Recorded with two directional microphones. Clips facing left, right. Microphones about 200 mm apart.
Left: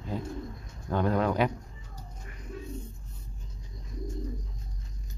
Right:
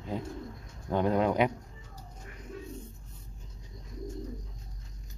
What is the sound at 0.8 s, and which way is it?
Speech, 20° right (ahead or behind).